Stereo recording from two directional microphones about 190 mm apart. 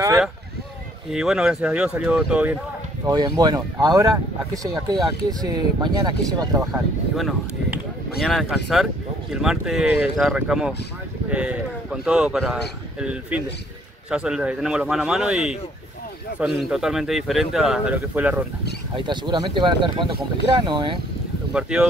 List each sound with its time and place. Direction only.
1.1 s speech: 5° right (ahead or behind)
3.1 s speech: 20° right (ahead or behind)
5.4 s speech: 20° right (ahead or behind)
6.7 s speech: centre (ahead or behind)
18.9 s speech: 25° right (ahead or behind)
21.5 s speech: 5° right (ahead or behind)